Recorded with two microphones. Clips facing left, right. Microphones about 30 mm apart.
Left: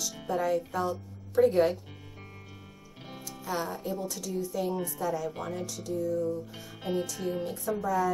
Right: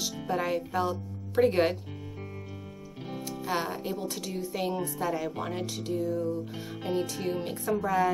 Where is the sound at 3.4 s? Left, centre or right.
Right.